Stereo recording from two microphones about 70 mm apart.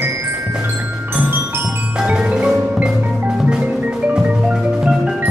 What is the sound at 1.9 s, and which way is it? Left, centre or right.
Percussion, centre.